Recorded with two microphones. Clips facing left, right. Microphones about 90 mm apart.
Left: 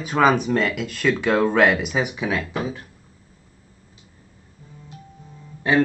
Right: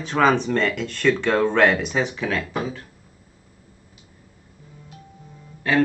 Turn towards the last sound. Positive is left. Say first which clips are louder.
# left 1 dB
turn(degrees=20)  # may be behind; listen again after turning